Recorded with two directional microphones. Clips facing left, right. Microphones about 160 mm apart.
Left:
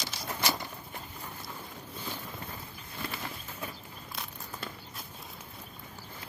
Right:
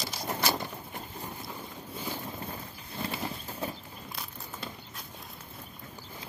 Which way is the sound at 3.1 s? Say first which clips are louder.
Right 4 dB; 30° right (ahead or behind).